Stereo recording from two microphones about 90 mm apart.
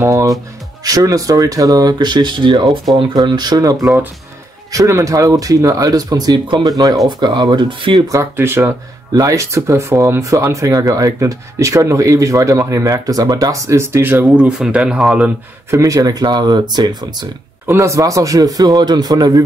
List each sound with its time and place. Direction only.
0.0 s a man's voice: 35° right (ahead or behind); by 2.6 s 60° right (ahead or behind)
3.1 s a man's voice: 45° right (ahead or behind)
4.7 s speech: 35° right (ahead or behind); by 8.0 s 55° right (ahead or behind)
8.1 s speech: 30° right (ahead or behind)
9.1 s speech: 40° right (ahead or behind); by 15.3 s 10° right (ahead or behind)
15.7 s a man's voice: 35° right (ahead or behind)
17.6 s a man's voice: 35° right (ahead or behind)